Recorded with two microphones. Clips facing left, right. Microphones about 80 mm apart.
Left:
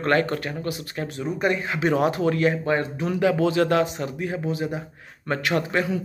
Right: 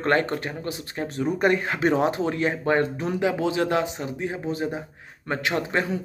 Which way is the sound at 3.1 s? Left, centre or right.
Centre.